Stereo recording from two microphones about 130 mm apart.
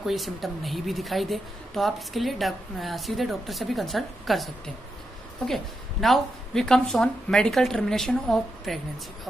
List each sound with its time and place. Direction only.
0.0 s a woman's voice: centre (ahead or behind)
5.5 s a woman's voice: centre (ahead or behind)